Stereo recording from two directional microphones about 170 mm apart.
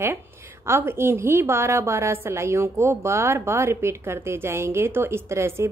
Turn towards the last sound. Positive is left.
turn(degrees=-15)  # may be behind; listen again after turning